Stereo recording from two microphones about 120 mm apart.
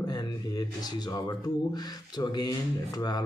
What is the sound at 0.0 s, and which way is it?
Speech, 35° left (ahead or behind).